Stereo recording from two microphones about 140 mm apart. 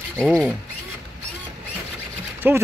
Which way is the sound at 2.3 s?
15° right (ahead or behind).